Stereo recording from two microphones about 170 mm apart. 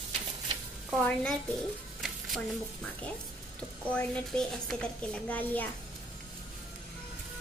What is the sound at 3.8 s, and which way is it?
A child's voice, 5° left (ahead or behind).